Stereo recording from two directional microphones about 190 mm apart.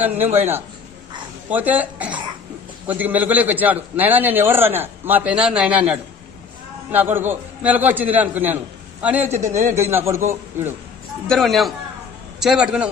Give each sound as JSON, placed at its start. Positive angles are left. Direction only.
{"t": 0.0, "sound": "a man's voice", "side_deg": -10}
{"t": 9.5, "sound": "a man's voice", "side_deg": -40}
{"t": 9.8, "sound": "a man's voice", "side_deg": -15}
{"t": 11.2, "sound": "a man's voice", "side_deg": 0}